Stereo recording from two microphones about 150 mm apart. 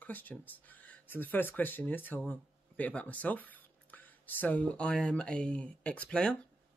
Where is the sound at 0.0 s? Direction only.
10° left (ahead or behind).